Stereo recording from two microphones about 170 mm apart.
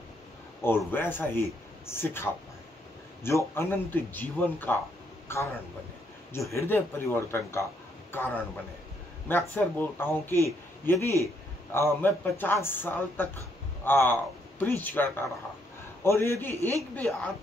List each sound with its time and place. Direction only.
0.6 s speech: 15° left (ahead or behind)
3.3 s speech: 15° left (ahead or behind)
9.3 s a woman's voice: 10° left (ahead or behind)